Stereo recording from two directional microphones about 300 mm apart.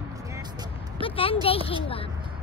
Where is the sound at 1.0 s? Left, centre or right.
Centre.